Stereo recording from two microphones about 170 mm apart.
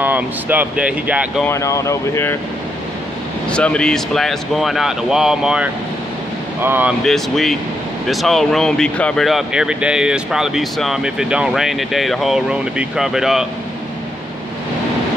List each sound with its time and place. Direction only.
0.0 s speech: 10° right (ahead or behind)
1.4 s speech: 15° left (ahead or behind)
3.4 s speech: 5° left (ahead or behind); by 6.9 s 10° right (ahead or behind)
7.1 s speech: centre (ahead or behind)